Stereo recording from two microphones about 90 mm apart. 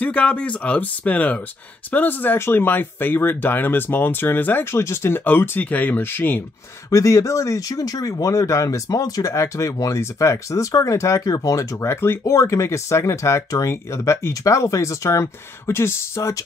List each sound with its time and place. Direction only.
0.0 s speech: 15° left (ahead or behind)
6.9 s speech: 35° left (ahead or behind)